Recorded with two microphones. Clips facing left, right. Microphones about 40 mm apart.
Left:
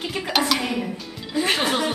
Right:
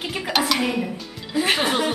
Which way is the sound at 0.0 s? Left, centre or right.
Centre.